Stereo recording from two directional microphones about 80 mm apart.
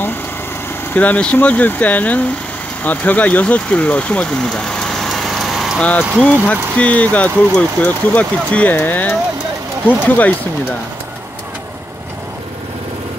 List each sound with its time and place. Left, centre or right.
0.9 s speech: centre
5.8 s speech: centre